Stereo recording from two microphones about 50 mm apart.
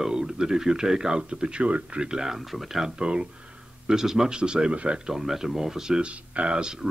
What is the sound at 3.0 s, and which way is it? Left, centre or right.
A man's voice, centre.